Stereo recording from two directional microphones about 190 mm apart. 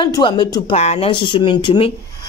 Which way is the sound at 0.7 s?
35° left (ahead or behind).